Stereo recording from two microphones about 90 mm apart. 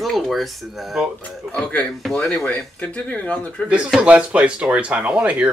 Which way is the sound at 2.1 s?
10° left (ahead or behind).